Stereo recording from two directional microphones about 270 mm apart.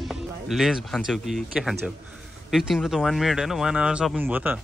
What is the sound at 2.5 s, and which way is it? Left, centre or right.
A man's voice, centre.